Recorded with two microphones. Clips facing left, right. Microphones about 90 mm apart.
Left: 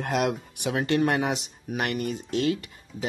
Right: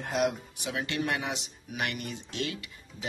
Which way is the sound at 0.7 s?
45° left (ahead or behind).